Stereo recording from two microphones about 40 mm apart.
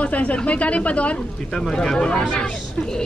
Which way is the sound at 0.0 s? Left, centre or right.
Left.